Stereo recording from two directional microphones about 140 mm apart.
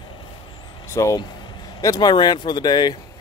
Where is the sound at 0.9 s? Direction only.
20° left (ahead or behind).